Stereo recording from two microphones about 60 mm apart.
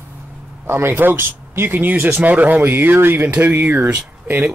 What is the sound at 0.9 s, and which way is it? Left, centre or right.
Speech, right.